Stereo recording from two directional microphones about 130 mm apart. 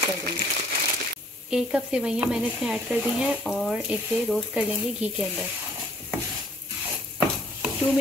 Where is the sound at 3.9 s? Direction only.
10° right (ahead or behind).